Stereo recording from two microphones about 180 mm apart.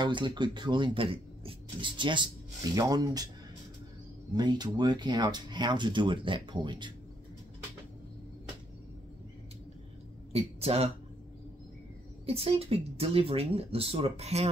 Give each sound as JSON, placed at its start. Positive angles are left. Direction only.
{"t": 0.0, "sound": "speech", "side_deg": -25}
{"t": 4.3, "sound": "speech", "side_deg": -25}
{"t": 10.3, "sound": "speech", "side_deg": -35}
{"t": 12.3, "sound": "speech", "side_deg": -35}